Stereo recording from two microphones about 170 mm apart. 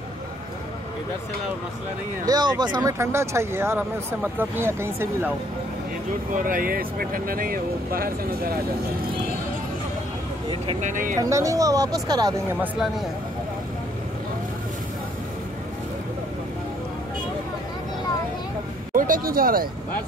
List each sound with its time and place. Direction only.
2.2 s speech: 25° right (ahead or behind)
6.3 s speech: 55° right (ahead or behind)
10.8 s speech: 50° right (ahead or behind)
11.1 s speech: 20° right (ahead or behind)
18.9 s speech: 55° right (ahead or behind)